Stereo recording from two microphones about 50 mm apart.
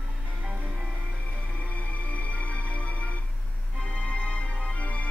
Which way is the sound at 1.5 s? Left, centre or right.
Left.